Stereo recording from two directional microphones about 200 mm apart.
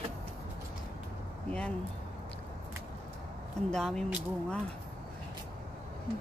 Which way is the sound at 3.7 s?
Centre (ahead or behind).